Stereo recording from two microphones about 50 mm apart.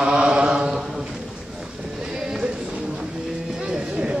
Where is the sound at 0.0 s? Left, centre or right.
Centre.